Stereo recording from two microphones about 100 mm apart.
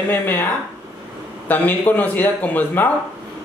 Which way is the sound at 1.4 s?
15° left (ahead or behind).